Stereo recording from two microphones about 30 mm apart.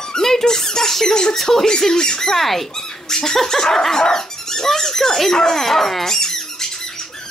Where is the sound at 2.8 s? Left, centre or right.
Centre.